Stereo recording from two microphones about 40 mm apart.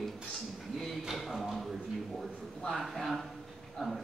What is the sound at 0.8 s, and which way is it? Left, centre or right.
Speech, centre.